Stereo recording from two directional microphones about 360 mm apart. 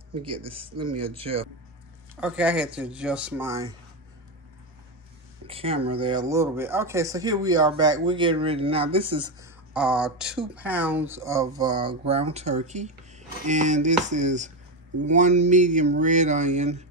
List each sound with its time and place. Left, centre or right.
0.5 s speech: centre
0.7 s speech: right
1.0 s speech: centre
2.1 s speech: centre
5.5 s speech: centre
9.8 s speech: centre